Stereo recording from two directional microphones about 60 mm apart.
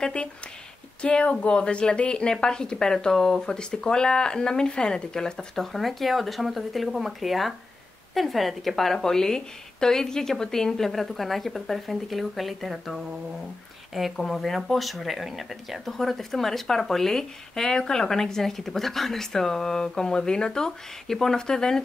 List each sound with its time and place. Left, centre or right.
0.0 s a woman's voice: centre